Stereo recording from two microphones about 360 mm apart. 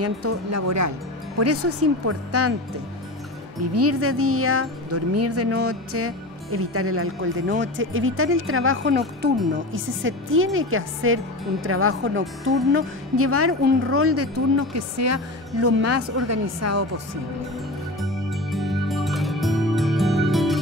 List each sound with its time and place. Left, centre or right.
0.0 s a woman's voice: right
3.7 s a woman's voice: right
18.0 s music: centre